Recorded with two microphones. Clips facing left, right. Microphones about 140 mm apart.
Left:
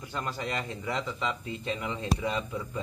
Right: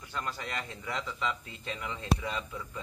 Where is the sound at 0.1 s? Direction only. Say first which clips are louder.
Left 3 dB; 20° left (ahead or behind).